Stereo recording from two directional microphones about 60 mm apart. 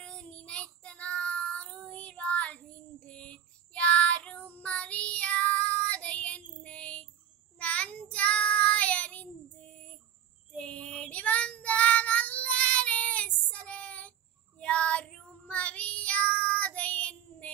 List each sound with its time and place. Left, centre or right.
0.0 s child singing: centre